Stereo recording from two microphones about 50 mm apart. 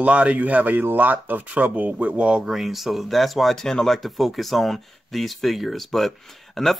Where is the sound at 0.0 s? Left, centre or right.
Right.